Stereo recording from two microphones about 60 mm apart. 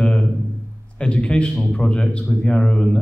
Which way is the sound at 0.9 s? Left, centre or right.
Centre.